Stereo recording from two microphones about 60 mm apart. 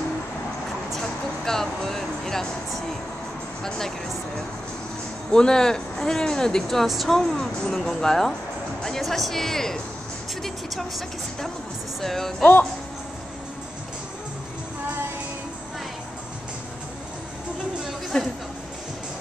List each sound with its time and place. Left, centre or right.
0.9 s speech: centre
5.3 s a woman's voice: centre
12.4 s speech: left
18.1 s a sound: centre